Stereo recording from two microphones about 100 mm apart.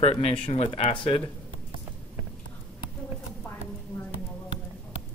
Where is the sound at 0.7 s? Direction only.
55° left (ahead or behind).